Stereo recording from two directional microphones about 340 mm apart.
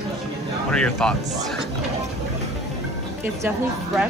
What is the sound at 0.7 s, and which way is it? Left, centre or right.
Speech, centre.